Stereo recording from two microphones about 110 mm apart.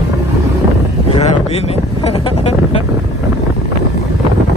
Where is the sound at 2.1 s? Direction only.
65° left (ahead or behind).